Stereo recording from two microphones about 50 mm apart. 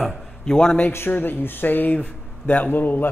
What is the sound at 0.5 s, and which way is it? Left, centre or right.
Speech, centre.